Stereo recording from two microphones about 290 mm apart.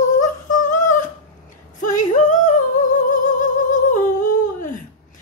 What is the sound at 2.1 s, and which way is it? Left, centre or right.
Humming, left.